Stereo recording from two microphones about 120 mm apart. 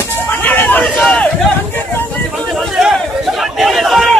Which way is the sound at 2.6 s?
5° right (ahead or behind).